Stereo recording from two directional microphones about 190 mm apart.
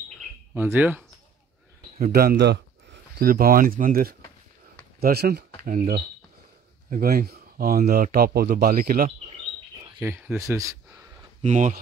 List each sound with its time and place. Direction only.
0.6 s speech: 10° right (ahead or behind)
2.0 s speech: 50° right (ahead or behind)
9.9 s speech: 10° right (ahead or behind)
11.4 s speech: 40° right (ahead or behind)